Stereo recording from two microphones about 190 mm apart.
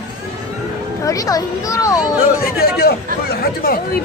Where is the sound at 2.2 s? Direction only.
50° left (ahead or behind).